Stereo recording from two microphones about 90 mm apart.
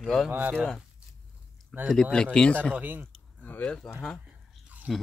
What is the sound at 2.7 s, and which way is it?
Speech, 20° right (ahead or behind).